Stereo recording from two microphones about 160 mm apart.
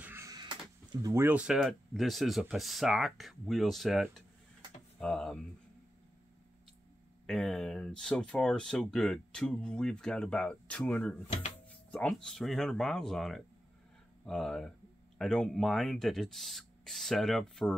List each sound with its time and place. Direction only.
0.0 s a sound: 15° right (ahead or behind)
1.0 s speech: 15° right (ahead or behind); by 5.4 s 5° left (ahead or behind)
7.2 s speech: 5° left (ahead or behind)